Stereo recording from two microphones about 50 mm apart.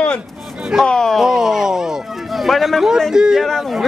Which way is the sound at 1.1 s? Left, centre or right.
Centre.